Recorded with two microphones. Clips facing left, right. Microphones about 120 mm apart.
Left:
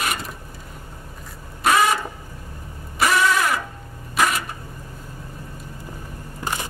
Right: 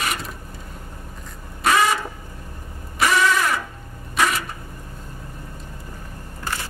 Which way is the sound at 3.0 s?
Centre (ahead or behind).